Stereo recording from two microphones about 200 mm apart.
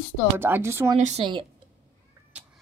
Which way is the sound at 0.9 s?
35° right (ahead or behind).